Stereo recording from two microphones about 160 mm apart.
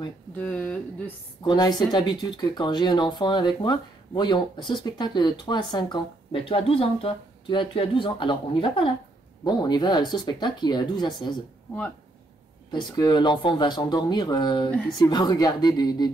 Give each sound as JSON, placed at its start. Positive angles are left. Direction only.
{"t": 0.4, "sound": "speech", "side_deg": 10}
{"t": 1.4, "sound": "speech", "side_deg": 25}
{"t": 12.7, "sound": "speech", "side_deg": 25}